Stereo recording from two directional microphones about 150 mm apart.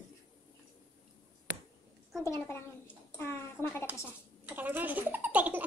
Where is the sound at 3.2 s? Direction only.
15° left (ahead or behind).